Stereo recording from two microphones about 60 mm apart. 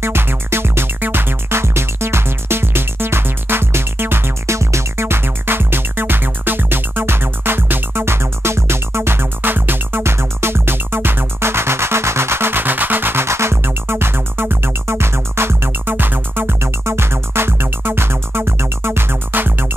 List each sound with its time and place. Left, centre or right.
0.0 s music: right
4.6 s music: right